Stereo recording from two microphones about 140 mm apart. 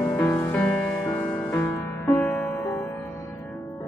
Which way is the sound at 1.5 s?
20° left (ahead or behind).